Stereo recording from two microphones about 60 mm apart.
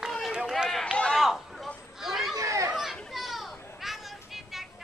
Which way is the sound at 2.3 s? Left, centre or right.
Right.